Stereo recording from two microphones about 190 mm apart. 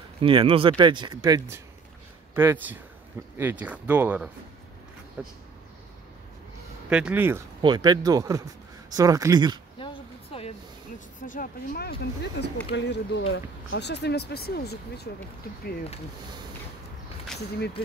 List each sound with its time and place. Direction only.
0.2 s speech: 30° right (ahead or behind)
2.3 s speech: 10° right (ahead or behind)
6.9 s speech: 5° right (ahead or behind)
7.6 s speech: 20° right (ahead or behind)
9.8 s a sound: 30° left (ahead or behind)
11.1 s speech: 45° left (ahead or behind)